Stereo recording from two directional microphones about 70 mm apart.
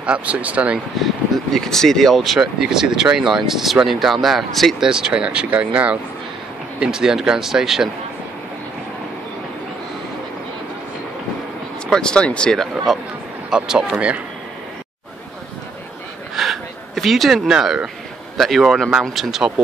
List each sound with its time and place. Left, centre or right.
0.0 s speech: centre
1.0 s speech: centre
11.9 s speech: centre
13.5 s speech: centre
16.3 s a sound: centre
18.4 s speech: centre